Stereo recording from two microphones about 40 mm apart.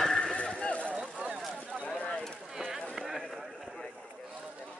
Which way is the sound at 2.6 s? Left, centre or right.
Centre.